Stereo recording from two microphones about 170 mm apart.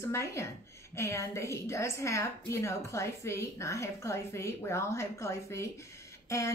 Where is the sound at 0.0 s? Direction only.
15° left (ahead or behind).